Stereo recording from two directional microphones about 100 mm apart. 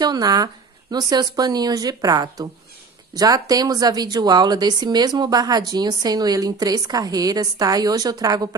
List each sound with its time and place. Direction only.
0.0 s speech: 40° right (ahead or behind)